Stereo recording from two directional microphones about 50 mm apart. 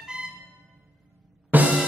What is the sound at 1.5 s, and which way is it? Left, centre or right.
Music, right.